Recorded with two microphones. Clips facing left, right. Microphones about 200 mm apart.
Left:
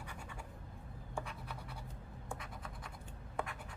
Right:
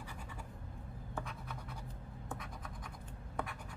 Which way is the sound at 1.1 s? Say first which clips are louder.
Even; 5° left (ahead or behind).